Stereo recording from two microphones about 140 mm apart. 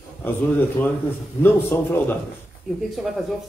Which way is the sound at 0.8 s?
10° left (ahead or behind).